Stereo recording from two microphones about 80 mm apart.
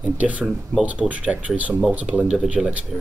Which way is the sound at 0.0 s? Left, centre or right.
Centre.